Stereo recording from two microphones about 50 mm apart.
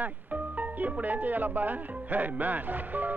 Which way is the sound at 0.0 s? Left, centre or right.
Right.